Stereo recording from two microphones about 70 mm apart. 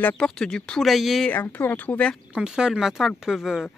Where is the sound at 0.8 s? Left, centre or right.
Centre.